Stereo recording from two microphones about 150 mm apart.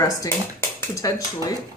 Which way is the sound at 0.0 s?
20° left (ahead or behind).